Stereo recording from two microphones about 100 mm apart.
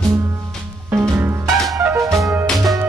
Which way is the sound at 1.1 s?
25° right (ahead or behind).